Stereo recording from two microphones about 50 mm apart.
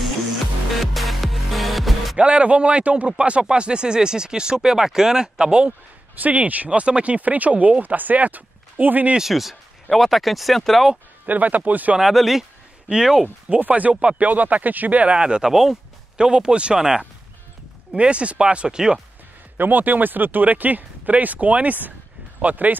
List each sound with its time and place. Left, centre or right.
0.7 s music: centre
2.1 s speech: right
6.1 s speech: right
9.3 s speech: centre
11.2 s speech: right
12.0 s a sound: centre
12.9 s speech: centre
13.6 s speech: right
15.1 s speech: centre
15.5 s speech: centre
16.2 s speech: centre
17.9 s speech: right
19.5 s speech: right